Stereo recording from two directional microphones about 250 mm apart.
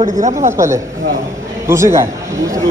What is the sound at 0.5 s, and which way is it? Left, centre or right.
A man's voice, centre.